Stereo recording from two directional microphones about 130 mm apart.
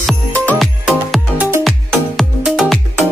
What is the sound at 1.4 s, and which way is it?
Music, 20° right (ahead or behind).